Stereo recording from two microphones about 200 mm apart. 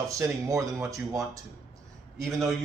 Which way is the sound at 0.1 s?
15° right (ahead or behind).